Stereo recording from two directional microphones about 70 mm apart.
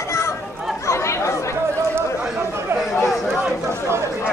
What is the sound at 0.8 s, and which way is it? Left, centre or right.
Chatter, left.